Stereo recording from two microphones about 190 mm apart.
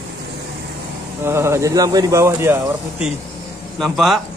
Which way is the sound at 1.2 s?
15° right (ahead or behind).